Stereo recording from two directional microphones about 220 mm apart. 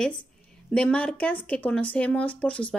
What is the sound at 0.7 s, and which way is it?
Speech, 5° left (ahead or behind).